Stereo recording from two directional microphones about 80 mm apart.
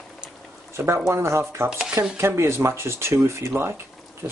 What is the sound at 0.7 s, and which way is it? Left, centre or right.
Speech, right.